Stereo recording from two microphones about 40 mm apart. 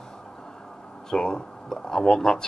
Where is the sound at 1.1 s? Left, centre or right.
Centre.